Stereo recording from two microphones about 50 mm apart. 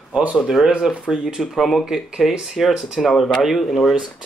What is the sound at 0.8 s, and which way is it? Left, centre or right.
Speech, centre.